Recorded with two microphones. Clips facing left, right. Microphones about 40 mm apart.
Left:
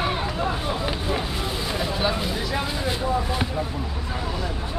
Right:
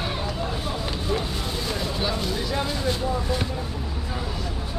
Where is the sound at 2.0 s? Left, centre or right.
Centre.